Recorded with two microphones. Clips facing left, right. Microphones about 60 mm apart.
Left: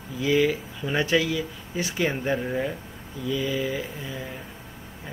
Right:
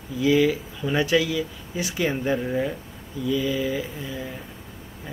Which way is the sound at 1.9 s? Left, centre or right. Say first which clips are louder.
Right 2 dB; centre.